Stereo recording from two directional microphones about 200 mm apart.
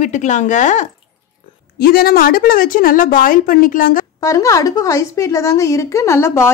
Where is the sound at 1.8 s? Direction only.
50° left (ahead or behind).